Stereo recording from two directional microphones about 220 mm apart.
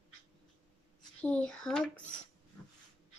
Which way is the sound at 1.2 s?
5° left (ahead or behind).